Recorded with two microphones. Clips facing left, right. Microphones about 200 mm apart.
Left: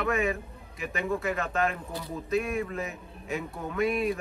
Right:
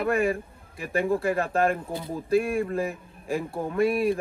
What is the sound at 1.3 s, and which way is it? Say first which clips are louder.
Speech: right 5 dB; 50° right (ahead or behind).